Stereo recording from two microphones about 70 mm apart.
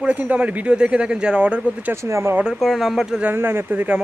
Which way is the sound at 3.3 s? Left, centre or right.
Right.